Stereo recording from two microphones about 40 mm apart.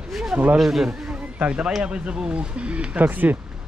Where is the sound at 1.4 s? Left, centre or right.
Right.